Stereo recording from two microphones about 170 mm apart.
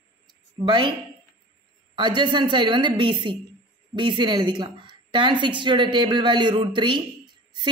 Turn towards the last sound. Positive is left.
turn(degrees=-25)  # may be behind; listen again after turning